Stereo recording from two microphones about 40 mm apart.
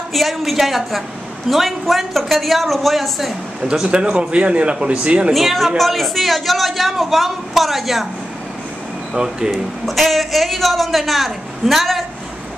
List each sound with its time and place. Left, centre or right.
0.1 s a man's voice: centre
3.8 s a man's voice: right
5.3 s a man's voice: centre
9.1 s speech: centre
9.5 s a man's voice: centre